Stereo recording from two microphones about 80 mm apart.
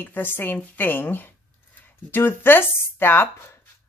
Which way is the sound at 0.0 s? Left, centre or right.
Left.